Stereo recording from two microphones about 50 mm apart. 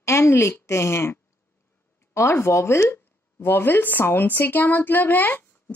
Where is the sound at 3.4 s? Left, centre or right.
Left.